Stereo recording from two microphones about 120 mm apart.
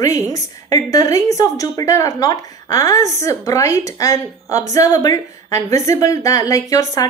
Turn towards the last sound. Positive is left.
turn(degrees=30)  # may be behind; listen again after turning